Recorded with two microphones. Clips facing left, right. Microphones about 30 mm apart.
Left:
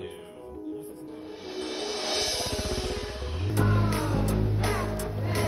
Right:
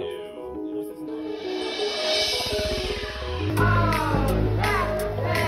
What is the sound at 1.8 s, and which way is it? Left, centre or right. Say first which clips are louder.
Music: right 6 dB; right.